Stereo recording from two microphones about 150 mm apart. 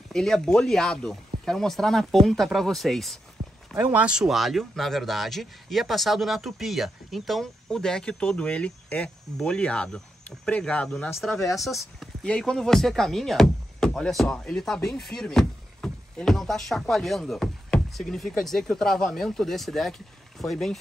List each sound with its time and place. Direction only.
0.1 s speech: 5° left (ahead or behind)
3.4 s a sound: 25° right (ahead or behind)
3.7 s speech: 10° right (ahead or behind)